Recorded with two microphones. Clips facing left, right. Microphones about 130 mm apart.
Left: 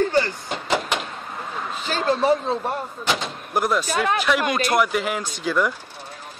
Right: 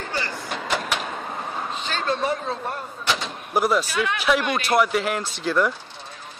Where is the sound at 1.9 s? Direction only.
30° left (ahead or behind).